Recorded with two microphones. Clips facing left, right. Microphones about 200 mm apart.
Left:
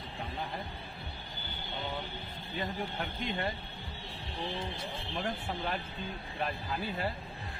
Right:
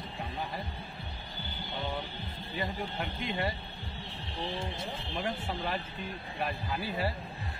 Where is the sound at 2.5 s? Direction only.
Centre (ahead or behind).